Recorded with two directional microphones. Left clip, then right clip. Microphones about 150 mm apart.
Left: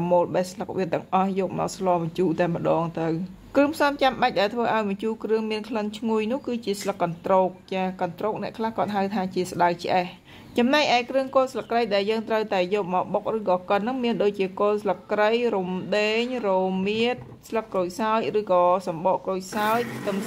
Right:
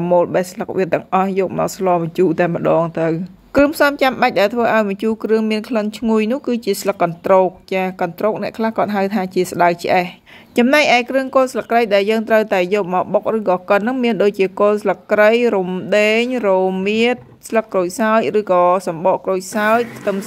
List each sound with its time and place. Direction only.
0.0 s speech: 35° right (ahead or behind)